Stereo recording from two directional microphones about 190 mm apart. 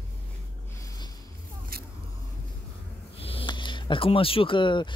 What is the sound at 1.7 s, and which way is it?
Vehicle, 50° right (ahead or behind).